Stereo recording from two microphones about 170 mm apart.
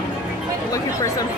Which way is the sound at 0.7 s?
20° left (ahead or behind).